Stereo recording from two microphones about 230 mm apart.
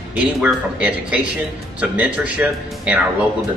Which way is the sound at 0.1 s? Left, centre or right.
Centre.